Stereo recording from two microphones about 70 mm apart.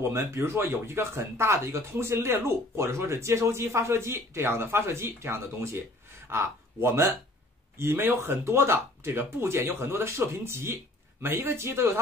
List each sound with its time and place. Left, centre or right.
0.0 s speech: right